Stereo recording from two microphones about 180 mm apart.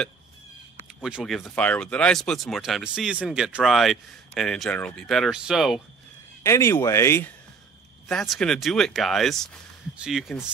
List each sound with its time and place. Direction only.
1.0 s speech: centre (ahead or behind)
6.4 s speech: 15° left (ahead or behind)
8.1 s speech: 5° left (ahead or behind)